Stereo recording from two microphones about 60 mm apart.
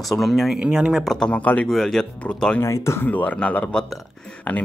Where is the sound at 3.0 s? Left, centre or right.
Left.